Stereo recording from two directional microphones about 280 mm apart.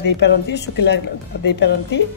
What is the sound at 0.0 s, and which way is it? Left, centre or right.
A woman's voice, left.